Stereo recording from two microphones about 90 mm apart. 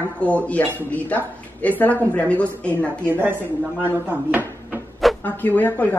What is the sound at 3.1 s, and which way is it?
Speech, 25° right (ahead or behind).